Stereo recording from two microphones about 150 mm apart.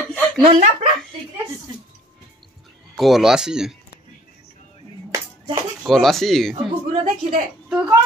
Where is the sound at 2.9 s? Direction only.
Centre (ahead or behind).